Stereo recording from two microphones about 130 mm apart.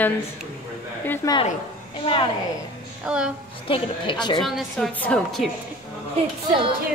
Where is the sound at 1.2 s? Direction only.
25° left (ahead or behind).